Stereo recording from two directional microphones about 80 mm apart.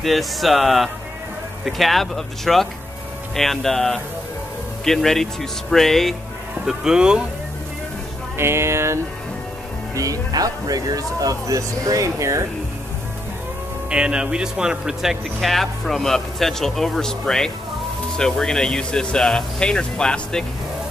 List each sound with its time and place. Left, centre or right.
0.0 s speech: centre
6.6 s speech: centre
8.4 s speech: right
9.9 s speech: right
13.8 s speech: centre